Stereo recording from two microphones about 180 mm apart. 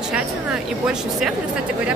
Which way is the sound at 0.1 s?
5° right (ahead or behind).